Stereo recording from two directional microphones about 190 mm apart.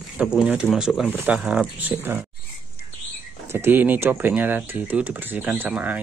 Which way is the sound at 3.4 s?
15° right (ahead or behind).